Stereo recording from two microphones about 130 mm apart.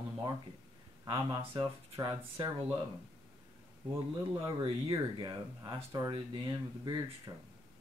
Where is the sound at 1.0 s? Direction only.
35° right (ahead or behind).